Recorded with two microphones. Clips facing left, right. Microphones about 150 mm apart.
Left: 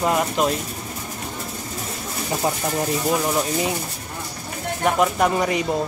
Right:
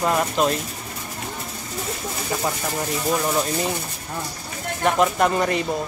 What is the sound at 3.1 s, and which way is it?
Speech, 10° left (ahead or behind).